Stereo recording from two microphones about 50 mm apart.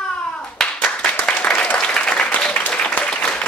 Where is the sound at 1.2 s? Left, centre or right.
Left.